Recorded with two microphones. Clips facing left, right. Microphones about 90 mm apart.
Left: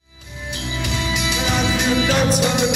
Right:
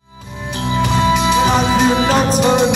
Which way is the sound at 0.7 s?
40° right (ahead or behind).